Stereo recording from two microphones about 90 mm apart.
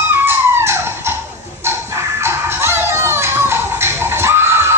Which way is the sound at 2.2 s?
25° right (ahead or behind).